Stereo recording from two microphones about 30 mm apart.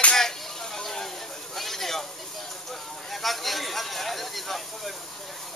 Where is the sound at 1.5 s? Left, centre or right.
Centre.